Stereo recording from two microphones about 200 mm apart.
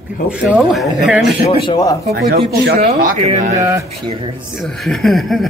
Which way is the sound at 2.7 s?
35° right (ahead or behind).